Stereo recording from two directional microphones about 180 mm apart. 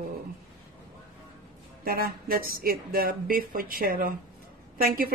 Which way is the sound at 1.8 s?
55° right (ahead or behind).